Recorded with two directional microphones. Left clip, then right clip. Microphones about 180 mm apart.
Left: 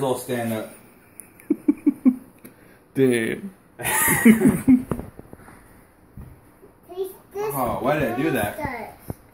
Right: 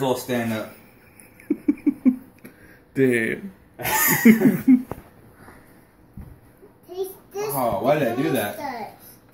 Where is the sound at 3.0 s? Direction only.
15° left (ahead or behind).